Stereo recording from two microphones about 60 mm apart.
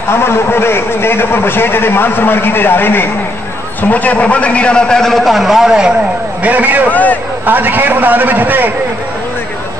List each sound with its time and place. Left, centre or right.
0.1 s a man's voice: left
3.9 s a man's voice: left; by 5.9 s centre
6.4 s a man's voice: right
6.9 s a man's voice: left
7.4 s a man's voice: right